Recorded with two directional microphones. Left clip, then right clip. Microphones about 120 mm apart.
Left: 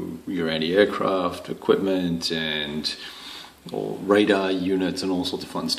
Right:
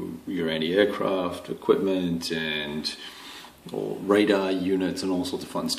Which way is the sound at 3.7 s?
10° left (ahead or behind).